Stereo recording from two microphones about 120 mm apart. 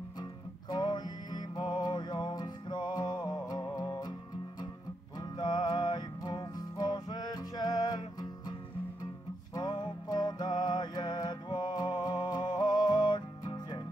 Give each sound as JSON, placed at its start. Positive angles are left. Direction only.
{"t": 0.2, "sound": "music", "side_deg": 35}
{"t": 5.4, "sound": "music", "side_deg": 35}